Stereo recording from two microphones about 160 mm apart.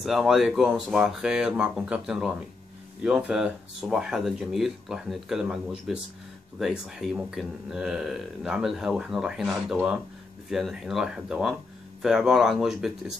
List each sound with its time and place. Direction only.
0.0 s speech: centre (ahead or behind)